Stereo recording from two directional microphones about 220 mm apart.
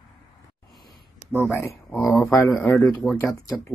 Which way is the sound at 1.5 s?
10° left (ahead or behind).